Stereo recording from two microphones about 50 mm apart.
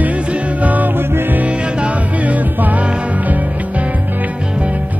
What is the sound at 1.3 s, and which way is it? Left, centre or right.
Music, right.